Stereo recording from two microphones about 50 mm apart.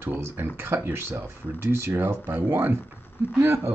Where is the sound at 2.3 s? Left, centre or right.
Right.